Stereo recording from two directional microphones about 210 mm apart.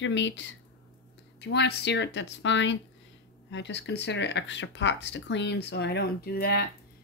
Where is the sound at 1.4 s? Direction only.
55° left (ahead or behind).